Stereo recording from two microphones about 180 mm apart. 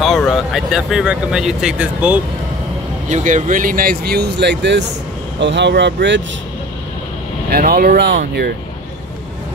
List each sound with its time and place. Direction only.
0.0 s speech: centre (ahead or behind)
3.1 s speech: 40° right (ahead or behind); by 6.2 s 90° right
7.5 s speech: 55° right (ahead or behind)